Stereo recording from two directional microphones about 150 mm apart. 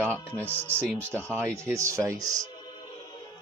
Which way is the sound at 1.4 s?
20° right (ahead or behind).